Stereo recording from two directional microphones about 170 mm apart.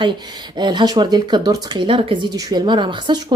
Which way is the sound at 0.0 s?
25° right (ahead or behind).